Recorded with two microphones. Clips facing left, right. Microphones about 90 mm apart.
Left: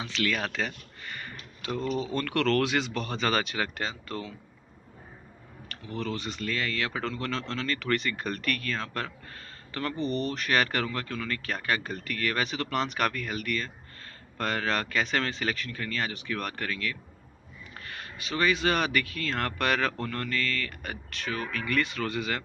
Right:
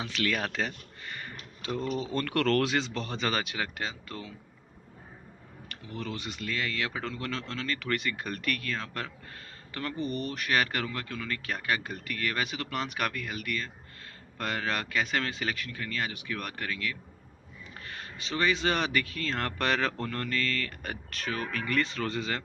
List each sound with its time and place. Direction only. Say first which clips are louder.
0.0 s speech: left 1 dB; 35° right (ahead or behind)
2.1 s speech: even; 35° right (ahead or behind); by 4.3 s 10° right (ahead or behind)
5.7 s speech: left 4 dB; 15° right (ahead or behind)
17.8 s speech: left 1 dB; 25° right (ahead or behind)
21.6 s speech: left 1 dB; 30° right (ahead or behind)